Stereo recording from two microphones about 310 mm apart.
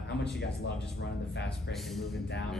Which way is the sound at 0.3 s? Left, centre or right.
Left.